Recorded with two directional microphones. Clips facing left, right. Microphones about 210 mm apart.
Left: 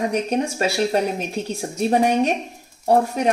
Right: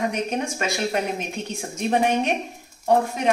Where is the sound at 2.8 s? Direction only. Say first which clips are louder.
Left 2 dB; 40° left (ahead or behind).